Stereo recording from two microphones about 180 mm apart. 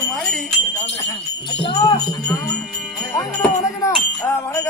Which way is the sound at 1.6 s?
25° left (ahead or behind).